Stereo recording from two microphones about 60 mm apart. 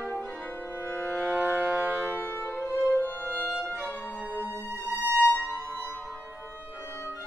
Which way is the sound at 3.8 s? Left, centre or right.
Left.